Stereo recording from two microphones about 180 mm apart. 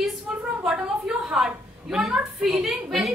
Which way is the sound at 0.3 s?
5° right (ahead or behind).